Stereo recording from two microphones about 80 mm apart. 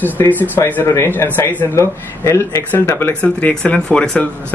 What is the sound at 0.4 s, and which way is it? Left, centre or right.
Speech, left.